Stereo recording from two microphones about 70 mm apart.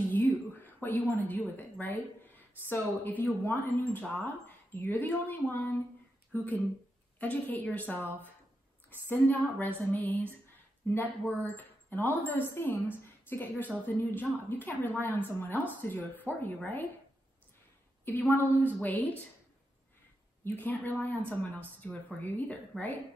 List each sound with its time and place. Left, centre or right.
0.1 s a sound: left
3.4 s a woman's voice: left
9.0 s a woman's voice: left
18.0 s a woman's voice: left
20.4 s a woman's voice: left